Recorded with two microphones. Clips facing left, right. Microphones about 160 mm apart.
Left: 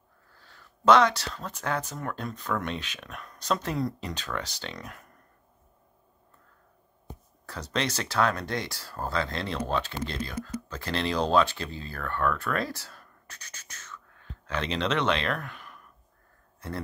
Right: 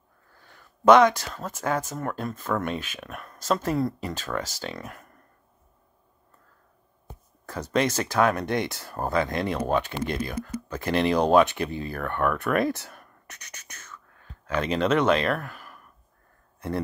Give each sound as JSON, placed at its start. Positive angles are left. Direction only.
{"t": 0.4, "sound": "a sound", "side_deg": -15}
{"t": 1.2, "sound": "speech", "side_deg": -10}
{"t": 7.7, "sound": "speech", "side_deg": -10}
{"t": 12.7, "sound": "a sound", "side_deg": -20}
{"t": 13.7, "sound": "whispering", "side_deg": -10}
{"t": 15.2, "sound": "speech", "side_deg": -5}